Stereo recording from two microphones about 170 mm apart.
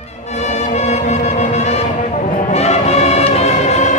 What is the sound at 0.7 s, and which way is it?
Music, 40° left (ahead or behind).